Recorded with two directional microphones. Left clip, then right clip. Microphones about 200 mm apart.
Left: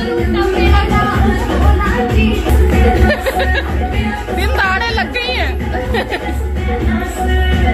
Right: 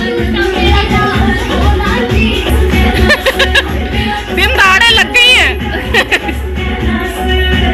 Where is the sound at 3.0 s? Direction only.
5° left (ahead or behind).